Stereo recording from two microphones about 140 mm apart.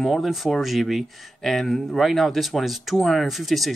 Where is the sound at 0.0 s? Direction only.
Centre (ahead or behind).